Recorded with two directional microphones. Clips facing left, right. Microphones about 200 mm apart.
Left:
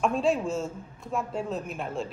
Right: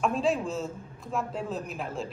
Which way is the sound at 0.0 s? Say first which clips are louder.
Left 2 dB; centre (ahead or behind).